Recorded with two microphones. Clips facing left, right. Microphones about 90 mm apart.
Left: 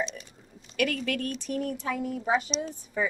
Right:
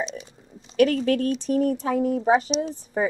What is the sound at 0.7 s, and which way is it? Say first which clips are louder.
A woman's voice: right 9 dB; 35° right (ahead or behind).